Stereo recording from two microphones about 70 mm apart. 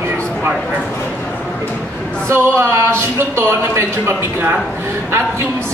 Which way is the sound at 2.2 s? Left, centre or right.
Right.